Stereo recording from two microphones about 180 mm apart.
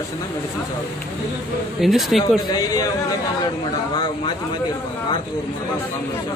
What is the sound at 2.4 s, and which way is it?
Speech, 20° left (ahead or behind).